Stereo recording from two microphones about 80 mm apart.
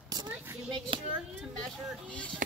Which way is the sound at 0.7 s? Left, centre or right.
Right.